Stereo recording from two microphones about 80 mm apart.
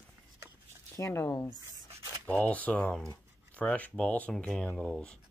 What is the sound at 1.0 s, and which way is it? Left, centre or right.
Speech, left.